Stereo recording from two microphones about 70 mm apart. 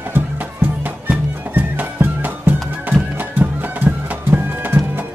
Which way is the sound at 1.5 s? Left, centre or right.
Right.